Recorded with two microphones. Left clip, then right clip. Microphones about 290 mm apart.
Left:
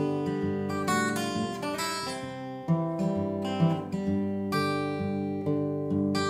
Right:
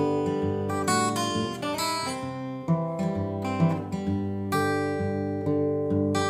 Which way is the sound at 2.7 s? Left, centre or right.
Right.